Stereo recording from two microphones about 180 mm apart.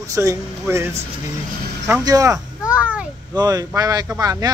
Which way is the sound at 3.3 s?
20° right (ahead or behind).